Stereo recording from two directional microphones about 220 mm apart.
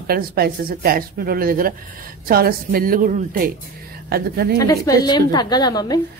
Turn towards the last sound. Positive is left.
turn(degrees=20)  # may be behind; listen again after turning